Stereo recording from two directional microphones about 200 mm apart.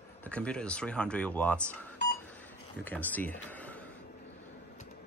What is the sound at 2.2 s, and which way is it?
Chink, 10° left (ahead or behind).